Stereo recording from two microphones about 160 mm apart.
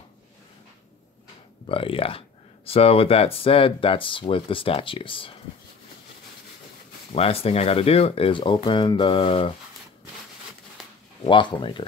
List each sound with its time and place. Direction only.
1.7 s speech: 35° left (ahead or behind)
7.1 s speech: 35° left (ahead or behind)
11.2 s speech: 30° left (ahead or behind)